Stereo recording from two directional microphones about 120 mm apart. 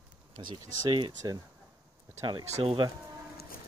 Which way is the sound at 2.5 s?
55° right (ahead or behind).